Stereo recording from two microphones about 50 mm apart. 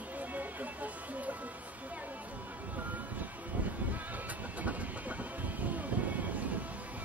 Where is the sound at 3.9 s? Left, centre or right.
Right.